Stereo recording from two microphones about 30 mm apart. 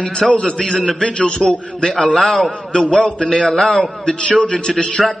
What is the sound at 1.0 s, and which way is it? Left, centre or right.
Speech, left.